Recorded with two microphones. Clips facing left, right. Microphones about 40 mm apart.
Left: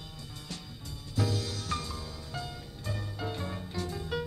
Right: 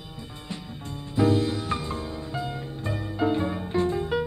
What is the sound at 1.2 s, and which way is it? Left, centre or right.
Music, right.